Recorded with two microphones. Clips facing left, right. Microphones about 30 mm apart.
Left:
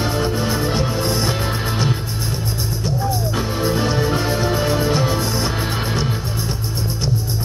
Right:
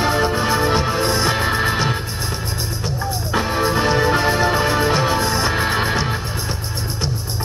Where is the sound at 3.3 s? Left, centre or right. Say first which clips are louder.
Right 2 dB; centre.